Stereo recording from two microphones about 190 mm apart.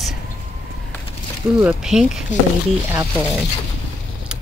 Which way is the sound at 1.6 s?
5° right (ahead or behind).